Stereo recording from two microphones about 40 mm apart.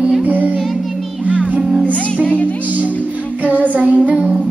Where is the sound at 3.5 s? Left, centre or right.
Right.